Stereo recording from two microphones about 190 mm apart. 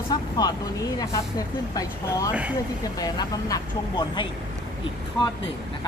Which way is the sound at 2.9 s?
20° left (ahead or behind).